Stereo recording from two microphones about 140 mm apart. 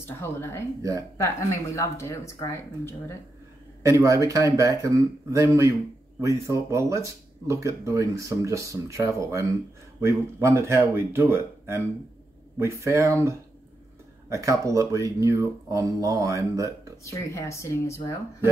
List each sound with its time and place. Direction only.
0.0 s speech: 15° left (ahead or behind)
3.8 s speech: 20° right (ahead or behind)
17.0 s speech: 20° left (ahead or behind)